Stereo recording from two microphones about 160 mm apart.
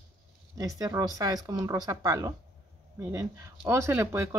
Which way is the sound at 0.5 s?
20° right (ahead or behind).